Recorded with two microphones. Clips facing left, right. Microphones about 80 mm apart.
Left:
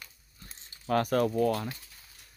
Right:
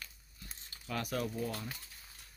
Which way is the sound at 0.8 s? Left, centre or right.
Left.